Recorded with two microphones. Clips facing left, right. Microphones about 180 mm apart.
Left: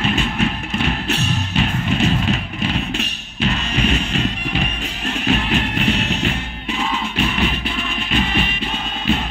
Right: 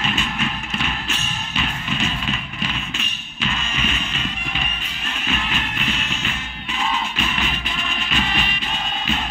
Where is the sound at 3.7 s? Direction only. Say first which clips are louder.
Left 8 dB; 70° left (ahead or behind).